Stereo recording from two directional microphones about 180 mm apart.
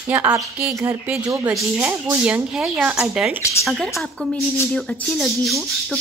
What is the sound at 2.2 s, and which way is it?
A woman's voice, 5° right (ahead or behind).